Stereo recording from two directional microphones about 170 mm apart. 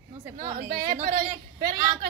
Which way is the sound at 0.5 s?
60° right (ahead or behind).